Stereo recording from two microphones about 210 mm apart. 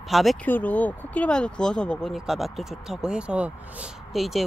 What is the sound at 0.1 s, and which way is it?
Speech, centre (ahead or behind).